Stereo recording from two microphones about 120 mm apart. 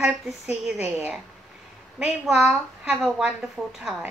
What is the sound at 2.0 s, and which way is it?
A woman's voice, 5° right (ahead or behind).